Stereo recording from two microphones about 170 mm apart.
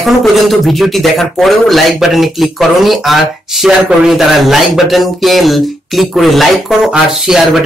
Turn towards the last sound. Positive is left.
turn(degrees=0)  # may be behind; listen again after turning